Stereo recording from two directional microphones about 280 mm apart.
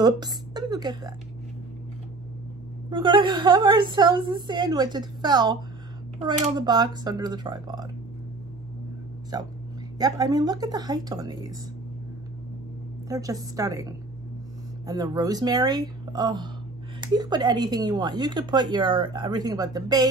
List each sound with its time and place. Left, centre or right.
0.0 s speech: centre
2.9 s speech: centre
9.3 s speech: centre
13.1 s speech: centre